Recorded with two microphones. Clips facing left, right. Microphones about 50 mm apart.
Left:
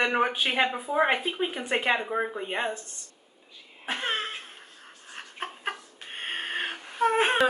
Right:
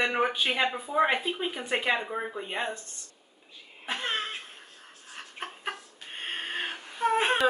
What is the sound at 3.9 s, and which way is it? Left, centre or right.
Cough, centre.